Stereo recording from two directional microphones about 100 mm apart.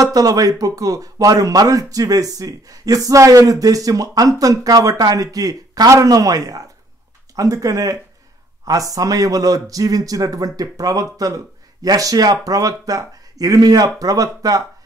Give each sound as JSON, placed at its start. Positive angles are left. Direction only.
{"t": 0.0, "sound": "a man's voice", "side_deg": -35}